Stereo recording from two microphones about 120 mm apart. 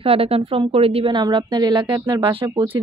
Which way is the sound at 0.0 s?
50° right (ahead or behind).